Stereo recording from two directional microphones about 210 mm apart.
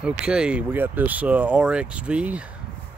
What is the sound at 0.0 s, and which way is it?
Speech, 5° right (ahead or behind).